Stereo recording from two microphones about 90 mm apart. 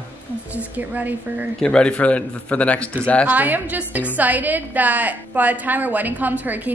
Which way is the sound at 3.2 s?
20° right (ahead or behind).